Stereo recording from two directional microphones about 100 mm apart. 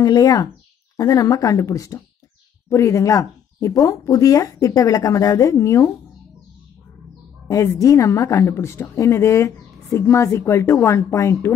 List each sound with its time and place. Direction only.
0.0 s speech: 40° left (ahead or behind)
7.4 s speech: 35° left (ahead or behind)